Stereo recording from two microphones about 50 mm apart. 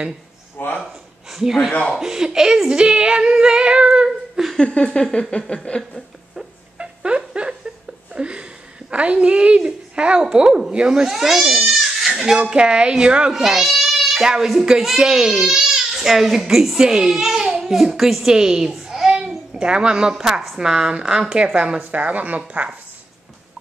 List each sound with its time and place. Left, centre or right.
0.6 s speech: left
1.3 s speech: centre
4.4 s a sound: centre
4.8 s a sound: centre
6.8 s a sound: centre
8.9 s a woman's voice: right
11.1 s goat: centre
12.4 s a woman's voice: centre
13.4 s speech: centre
18.9 s a sound: centre
20.5 s a woman's voice: centre
21.9 s speech: right